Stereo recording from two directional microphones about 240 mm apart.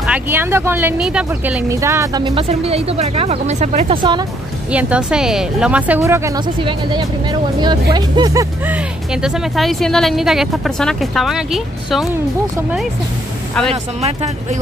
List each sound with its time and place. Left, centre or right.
0.0 s speech: centre
4.6 s speech: centre
14.0 s speech: right